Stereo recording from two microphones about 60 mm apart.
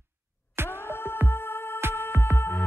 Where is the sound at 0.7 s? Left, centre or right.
Left.